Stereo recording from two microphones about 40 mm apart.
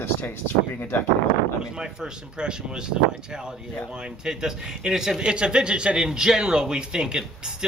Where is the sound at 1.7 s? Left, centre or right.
Centre.